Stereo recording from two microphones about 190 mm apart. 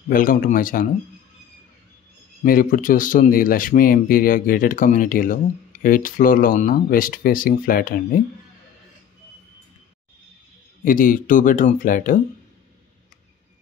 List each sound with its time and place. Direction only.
0.1 s speech: 45° left (ahead or behind)
2.4 s speech: 45° left (ahead or behind)
10.8 s speech: 45° left (ahead or behind)